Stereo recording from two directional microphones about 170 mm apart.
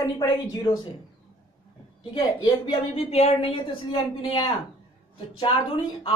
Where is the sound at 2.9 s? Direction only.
35° left (ahead or behind).